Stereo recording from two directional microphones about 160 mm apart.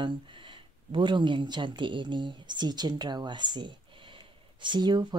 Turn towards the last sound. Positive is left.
turn(degrees=-25)  # may be behind; listen again after turning